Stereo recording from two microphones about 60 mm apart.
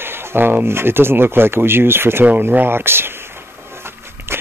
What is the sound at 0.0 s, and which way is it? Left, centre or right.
Speech, right.